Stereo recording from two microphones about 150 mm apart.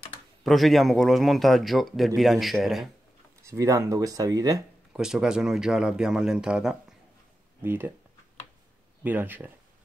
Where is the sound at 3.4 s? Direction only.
20° right (ahead or behind).